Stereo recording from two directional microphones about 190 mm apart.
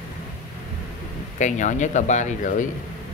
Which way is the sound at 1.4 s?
40° left (ahead or behind).